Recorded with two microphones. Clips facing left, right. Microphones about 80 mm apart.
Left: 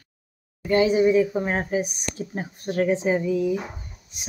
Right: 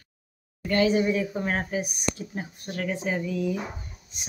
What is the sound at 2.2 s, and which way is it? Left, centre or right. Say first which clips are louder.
A woman's voice: left 4 dB; left.